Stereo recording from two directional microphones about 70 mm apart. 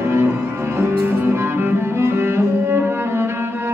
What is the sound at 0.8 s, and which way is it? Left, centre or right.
Music, right.